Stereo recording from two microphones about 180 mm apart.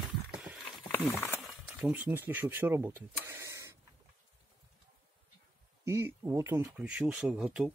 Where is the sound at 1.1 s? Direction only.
15° left (ahead or behind).